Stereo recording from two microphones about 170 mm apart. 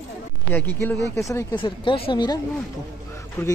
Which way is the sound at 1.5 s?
30° left (ahead or behind).